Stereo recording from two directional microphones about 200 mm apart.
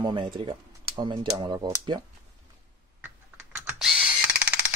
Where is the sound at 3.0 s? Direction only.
5° right (ahead or behind).